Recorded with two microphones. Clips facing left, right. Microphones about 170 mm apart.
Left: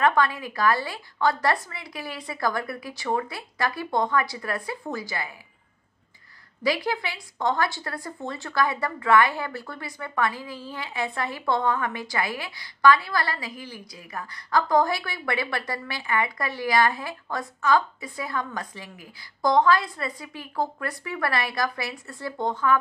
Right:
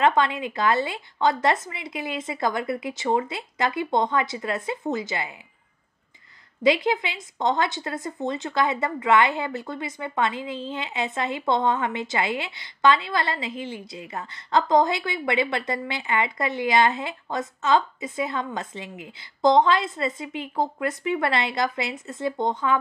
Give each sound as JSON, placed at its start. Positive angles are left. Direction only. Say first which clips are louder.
{"t": 0.0, "sound": "speech", "louder": "right 1 dB", "side_deg": -20}
{"t": 6.6, "sound": "speech", "louder": "right 5 dB", "side_deg": -20}